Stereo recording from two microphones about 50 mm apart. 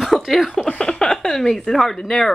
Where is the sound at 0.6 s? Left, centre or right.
Centre.